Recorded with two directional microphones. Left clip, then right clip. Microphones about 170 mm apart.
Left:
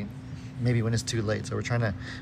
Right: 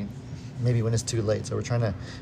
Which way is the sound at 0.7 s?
20° right (ahead or behind).